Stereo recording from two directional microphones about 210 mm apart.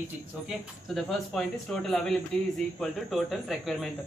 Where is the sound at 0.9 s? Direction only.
Centre (ahead or behind).